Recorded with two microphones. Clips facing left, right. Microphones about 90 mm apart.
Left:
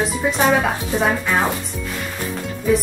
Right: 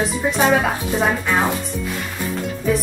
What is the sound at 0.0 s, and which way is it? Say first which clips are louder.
Speech: even; centre (ahead or behind).